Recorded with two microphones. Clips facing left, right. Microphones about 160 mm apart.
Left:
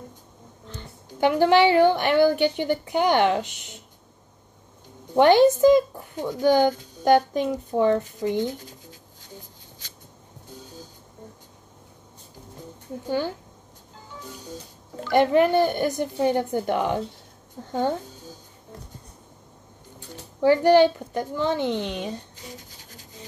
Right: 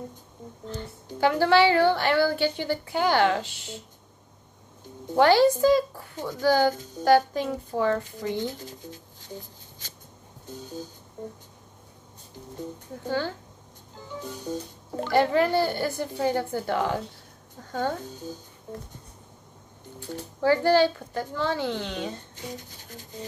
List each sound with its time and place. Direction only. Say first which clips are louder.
1.2 s a woman's voice: left 2 dB; 20° left (ahead or behind)
5.1 s a child's voice: left 3 dB; 20° left (ahead or behind)
15.1 s a child's voice: left 4 dB; 20° left (ahead or behind)
20.4 s a woman's voice: left 4 dB; 15° left (ahead or behind)